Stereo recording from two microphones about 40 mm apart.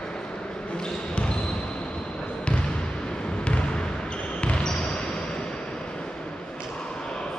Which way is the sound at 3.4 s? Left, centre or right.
Left.